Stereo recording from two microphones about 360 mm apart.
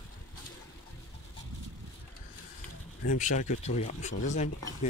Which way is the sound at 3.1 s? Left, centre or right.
Left.